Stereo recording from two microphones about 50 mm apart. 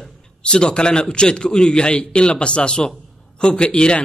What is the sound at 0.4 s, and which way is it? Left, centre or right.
A man's voice, centre.